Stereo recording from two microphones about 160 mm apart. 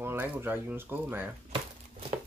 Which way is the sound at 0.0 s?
15° right (ahead or behind).